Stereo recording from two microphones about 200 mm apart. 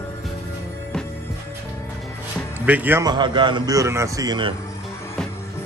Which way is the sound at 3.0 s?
20° right (ahead or behind).